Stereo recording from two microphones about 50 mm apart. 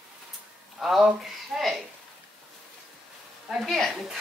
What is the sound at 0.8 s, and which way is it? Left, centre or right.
Speech, centre.